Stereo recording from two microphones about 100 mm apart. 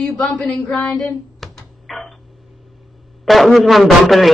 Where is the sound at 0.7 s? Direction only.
5° left (ahead or behind).